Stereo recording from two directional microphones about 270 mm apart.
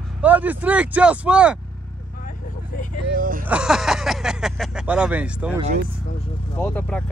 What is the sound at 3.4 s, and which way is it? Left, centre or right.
Speech, centre.